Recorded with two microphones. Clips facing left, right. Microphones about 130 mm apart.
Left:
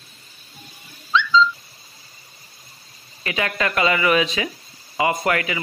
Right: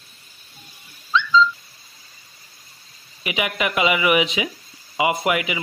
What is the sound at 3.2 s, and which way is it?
A man's voice, 15° right (ahead or behind).